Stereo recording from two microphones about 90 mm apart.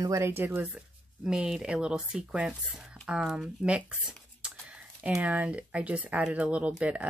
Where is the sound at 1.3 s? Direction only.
5° right (ahead or behind).